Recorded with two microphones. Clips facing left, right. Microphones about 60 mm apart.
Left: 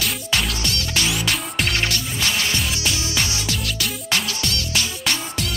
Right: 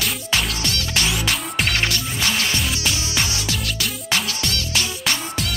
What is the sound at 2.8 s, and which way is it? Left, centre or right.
Music, right.